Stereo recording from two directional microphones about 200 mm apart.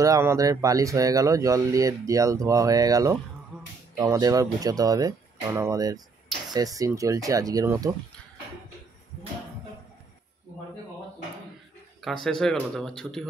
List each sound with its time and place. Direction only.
0.0 s speech: 15° right (ahead or behind)
12.0 s speech: centre (ahead or behind)